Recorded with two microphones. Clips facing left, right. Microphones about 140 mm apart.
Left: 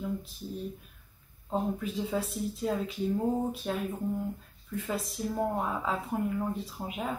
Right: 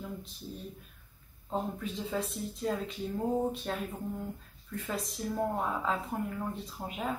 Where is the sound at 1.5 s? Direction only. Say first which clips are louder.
Left 3 dB; 5° left (ahead or behind).